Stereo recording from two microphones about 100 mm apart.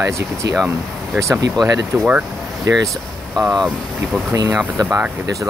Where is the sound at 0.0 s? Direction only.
30° right (ahead or behind).